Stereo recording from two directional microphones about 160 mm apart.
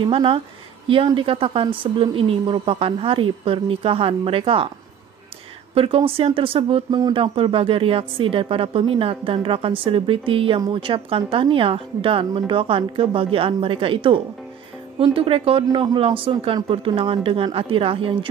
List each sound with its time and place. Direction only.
0.0 s speech: 35° right (ahead or behind)
5.8 s speech: 35° right (ahead or behind)